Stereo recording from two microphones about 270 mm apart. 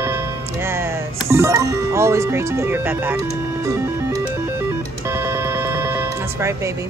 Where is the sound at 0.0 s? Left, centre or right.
Centre.